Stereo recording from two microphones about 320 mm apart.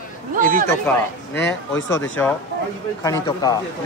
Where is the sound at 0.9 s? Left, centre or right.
Centre.